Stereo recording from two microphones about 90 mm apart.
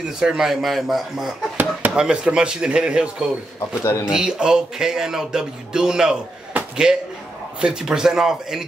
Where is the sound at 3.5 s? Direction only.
30° left (ahead or behind).